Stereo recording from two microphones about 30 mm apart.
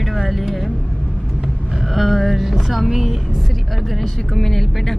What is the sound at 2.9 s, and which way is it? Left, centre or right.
Speech, centre.